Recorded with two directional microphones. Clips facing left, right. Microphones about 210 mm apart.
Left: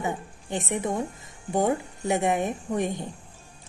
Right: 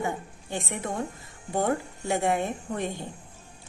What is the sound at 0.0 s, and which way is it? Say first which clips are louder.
A woman's voice: even; 20° left (ahead or behind).